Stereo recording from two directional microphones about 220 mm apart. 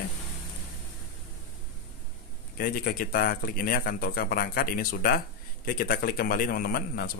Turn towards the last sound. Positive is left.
turn(degrees=40)  # may be behind; listen again after turning